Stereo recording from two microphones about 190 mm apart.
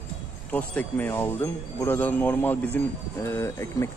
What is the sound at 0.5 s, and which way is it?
Speech, 10° left (ahead or behind).